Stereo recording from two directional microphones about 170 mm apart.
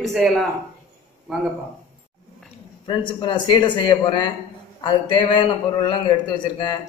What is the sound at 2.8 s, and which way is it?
A man's voice, 25° left (ahead or behind).